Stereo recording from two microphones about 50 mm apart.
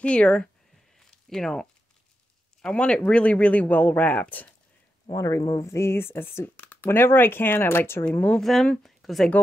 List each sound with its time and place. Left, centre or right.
0.0 s speech: left
0.9 s a sound: centre
2.7 s speech: centre
5.1 s speech: left
6.5 s a sound: left
6.9 s speech: left
8.4 s speech: centre